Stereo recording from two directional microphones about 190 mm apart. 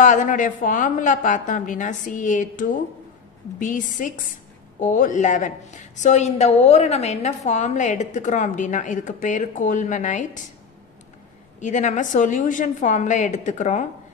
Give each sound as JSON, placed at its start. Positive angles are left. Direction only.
{"t": 0.0, "sound": "a woman's voice", "side_deg": 40}
{"t": 11.6, "sound": "a woman's voice", "side_deg": 40}